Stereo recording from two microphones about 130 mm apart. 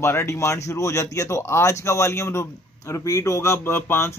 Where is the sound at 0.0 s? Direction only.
20° left (ahead or behind).